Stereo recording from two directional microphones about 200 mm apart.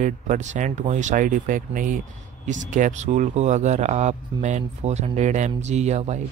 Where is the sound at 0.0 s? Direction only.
35° right (ahead or behind).